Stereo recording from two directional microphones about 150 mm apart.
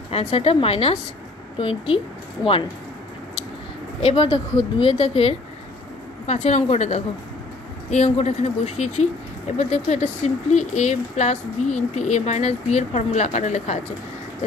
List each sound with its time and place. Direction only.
0.1 s a woman's voice: 45° left (ahead or behind)
4.0 s a woman's voice: 35° left (ahead or behind); by 13.7 s 50° left (ahead or behind)